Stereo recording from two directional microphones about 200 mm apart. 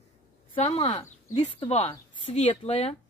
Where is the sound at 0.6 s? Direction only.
30° left (ahead or behind).